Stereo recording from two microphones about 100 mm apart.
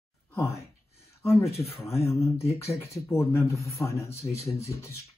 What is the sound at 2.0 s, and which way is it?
Speech, 30° left (ahead or behind).